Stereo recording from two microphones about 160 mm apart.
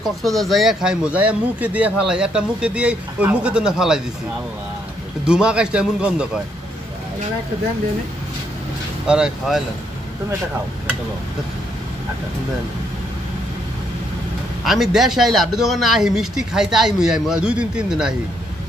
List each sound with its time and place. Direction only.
0.0 s speech: centre (ahead or behind)
5.2 s speech: 5° right (ahead or behind)
9.0 s speech: 5° right (ahead or behind)
14.6 s speech: centre (ahead or behind)